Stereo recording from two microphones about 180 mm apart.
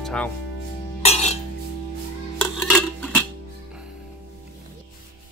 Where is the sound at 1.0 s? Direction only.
40° left (ahead or behind).